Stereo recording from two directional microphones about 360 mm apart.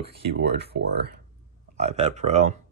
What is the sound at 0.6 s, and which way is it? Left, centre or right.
Speech, right.